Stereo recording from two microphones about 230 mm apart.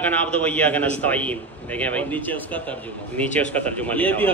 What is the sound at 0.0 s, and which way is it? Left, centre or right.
A man's voice, centre.